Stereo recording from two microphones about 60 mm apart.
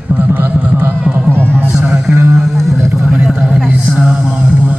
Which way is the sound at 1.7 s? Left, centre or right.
Centre.